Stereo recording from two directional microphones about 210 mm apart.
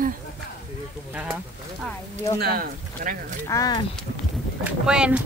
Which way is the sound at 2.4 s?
45° right (ahead or behind).